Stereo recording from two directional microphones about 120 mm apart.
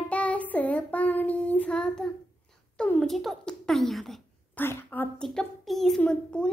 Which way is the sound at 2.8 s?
10° left (ahead or behind).